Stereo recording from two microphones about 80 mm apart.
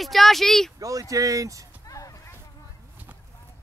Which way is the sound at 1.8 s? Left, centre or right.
Left.